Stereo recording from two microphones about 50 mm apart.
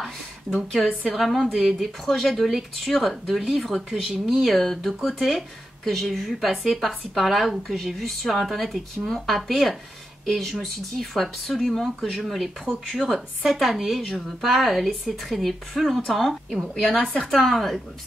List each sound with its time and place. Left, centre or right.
0.8 s speech: centre
16.9 s speech: centre
17.2 s speech: centre